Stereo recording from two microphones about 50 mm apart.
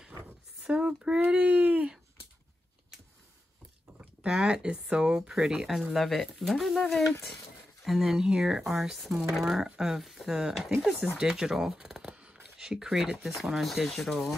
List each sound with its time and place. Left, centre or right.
0.7 s speech: centre
1.2 s a sound: right
4.0 s speech: centre